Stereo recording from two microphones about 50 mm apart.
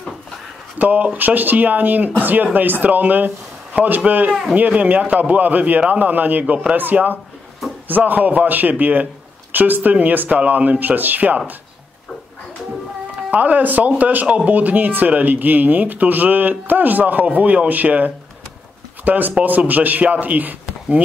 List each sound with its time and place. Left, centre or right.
0.7 s speech: right
4.3 s speech: centre
4.6 s speech: right
13.3 s speech: right